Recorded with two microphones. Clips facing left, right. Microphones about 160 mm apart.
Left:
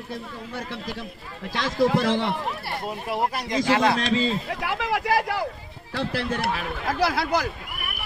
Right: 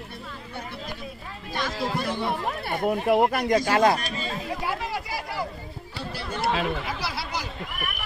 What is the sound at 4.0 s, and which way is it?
Speech, 90° left.